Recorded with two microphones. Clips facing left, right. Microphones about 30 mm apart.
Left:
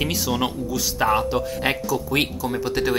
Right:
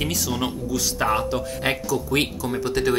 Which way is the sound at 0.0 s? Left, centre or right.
Centre.